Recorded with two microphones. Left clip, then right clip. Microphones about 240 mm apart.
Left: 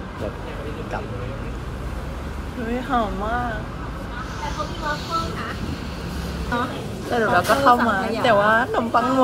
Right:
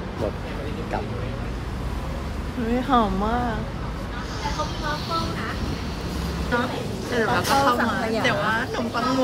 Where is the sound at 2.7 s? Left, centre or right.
Centre.